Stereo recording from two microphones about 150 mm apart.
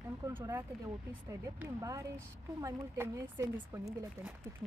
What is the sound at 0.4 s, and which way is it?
Speech, 15° right (ahead or behind).